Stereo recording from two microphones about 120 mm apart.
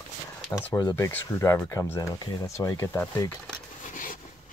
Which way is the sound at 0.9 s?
25° left (ahead or behind).